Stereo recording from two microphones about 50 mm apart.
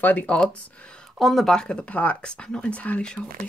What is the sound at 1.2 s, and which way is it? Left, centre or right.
Speech, centre.